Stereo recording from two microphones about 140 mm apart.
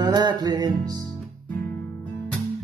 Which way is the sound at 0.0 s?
30° right (ahead or behind).